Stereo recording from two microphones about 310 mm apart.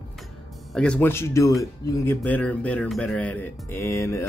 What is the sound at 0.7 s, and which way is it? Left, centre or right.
Speech, centre.